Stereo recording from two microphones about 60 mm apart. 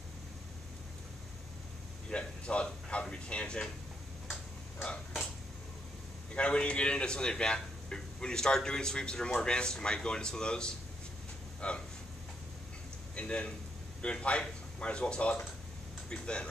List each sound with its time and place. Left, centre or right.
2.0 s speech: centre
6.3 s speech: centre
11.6 s a sound: centre
13.1 s a man's voice: centre